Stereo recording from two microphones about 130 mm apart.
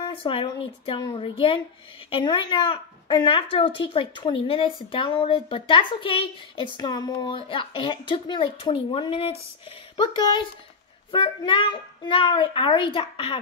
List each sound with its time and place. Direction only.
0.0 s a woman's voice: 45° left (ahead or behind)
9.9 s a woman's voice: 35° left (ahead or behind)